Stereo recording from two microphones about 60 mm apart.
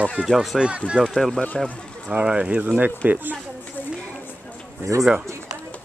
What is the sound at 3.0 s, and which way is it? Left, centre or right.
Speech, right.